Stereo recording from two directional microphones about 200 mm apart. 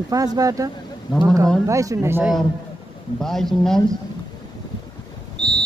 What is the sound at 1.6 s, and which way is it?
Speech, 15° right (ahead or behind).